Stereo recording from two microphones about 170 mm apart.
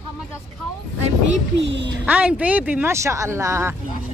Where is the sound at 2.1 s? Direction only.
10° right (ahead or behind).